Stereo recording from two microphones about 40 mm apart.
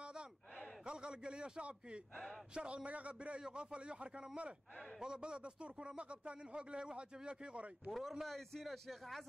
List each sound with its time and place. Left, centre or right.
0.0 s a sound: right
0.8 s a man's voice: right
7.9 s a man's voice: centre